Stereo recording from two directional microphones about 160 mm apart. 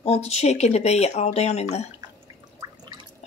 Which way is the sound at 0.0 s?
40° left (ahead or behind).